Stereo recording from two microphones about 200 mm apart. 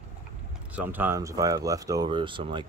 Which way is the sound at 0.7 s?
10° right (ahead or behind).